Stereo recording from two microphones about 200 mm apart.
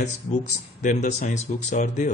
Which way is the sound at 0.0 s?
35° left (ahead or behind).